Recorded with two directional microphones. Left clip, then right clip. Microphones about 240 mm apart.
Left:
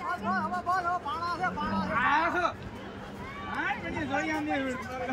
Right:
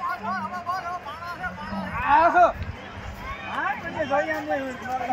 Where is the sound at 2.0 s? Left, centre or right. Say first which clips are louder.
Right 10 dB; right.